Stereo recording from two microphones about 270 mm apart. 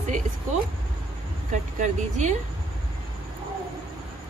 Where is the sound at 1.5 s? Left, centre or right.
Right.